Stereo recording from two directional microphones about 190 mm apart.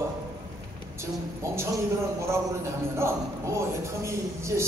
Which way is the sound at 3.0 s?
15° right (ahead or behind).